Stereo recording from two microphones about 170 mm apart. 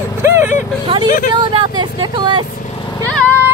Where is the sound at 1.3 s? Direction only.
30° right (ahead or behind).